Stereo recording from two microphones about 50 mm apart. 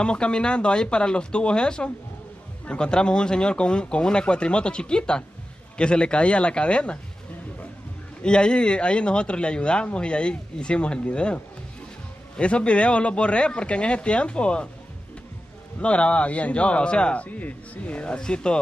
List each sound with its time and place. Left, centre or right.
0.0 s speech: centre
8.2 s speech: centre
15.8 s speech: left